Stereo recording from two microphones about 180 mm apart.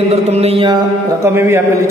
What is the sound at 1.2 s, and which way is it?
Speech, 15° right (ahead or behind).